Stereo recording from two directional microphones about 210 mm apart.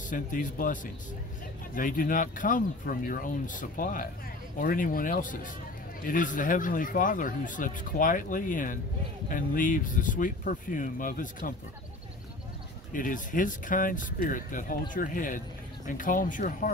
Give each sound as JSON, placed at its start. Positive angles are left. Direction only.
{"t": 0.1, "sound": "speech", "side_deg": 40}
{"t": 1.8, "sound": "speech", "side_deg": 40}
{"t": 12.9, "sound": "speech", "side_deg": 40}